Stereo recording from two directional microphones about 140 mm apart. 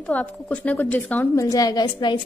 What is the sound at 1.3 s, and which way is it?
Speech, 25° left (ahead or behind).